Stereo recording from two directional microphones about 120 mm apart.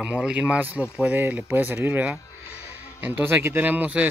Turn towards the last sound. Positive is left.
turn(degrees=-15)  # may be behind; listen again after turning